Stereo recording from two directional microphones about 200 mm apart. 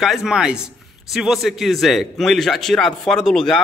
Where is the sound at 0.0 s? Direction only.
Centre (ahead or behind).